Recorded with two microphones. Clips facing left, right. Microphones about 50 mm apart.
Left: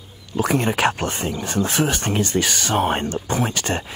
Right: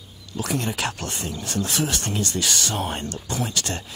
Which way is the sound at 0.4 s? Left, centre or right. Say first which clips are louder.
Left 7 dB; left.